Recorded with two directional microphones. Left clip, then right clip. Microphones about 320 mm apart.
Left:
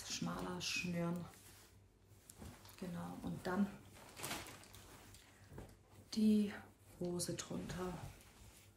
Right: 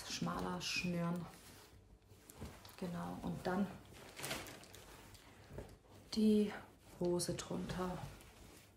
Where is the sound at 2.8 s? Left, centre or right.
Centre.